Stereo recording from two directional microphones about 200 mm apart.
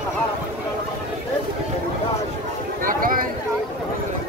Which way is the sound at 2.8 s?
45° right (ahead or behind).